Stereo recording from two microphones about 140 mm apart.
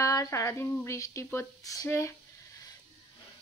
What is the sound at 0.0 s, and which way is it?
Speech, 25° left (ahead or behind).